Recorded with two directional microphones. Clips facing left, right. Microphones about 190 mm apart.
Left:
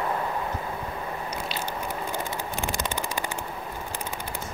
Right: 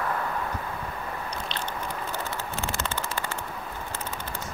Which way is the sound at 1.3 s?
10° left (ahead or behind).